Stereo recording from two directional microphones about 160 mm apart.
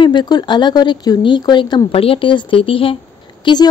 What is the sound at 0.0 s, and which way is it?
A woman's voice, 30° left (ahead or behind).